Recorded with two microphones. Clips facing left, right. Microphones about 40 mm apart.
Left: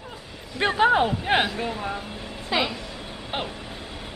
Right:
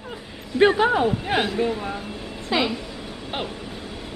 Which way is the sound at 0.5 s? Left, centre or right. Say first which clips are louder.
Right 8 dB; centre.